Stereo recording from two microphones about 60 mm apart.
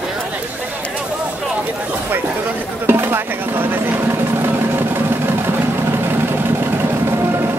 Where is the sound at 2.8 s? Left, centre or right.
Right.